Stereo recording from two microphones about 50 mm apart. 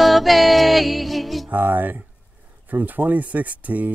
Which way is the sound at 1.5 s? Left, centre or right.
Right.